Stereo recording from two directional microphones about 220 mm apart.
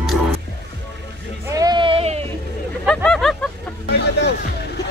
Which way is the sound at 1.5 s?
20° right (ahead or behind).